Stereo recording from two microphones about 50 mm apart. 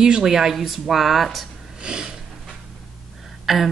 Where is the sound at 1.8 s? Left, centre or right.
Centre.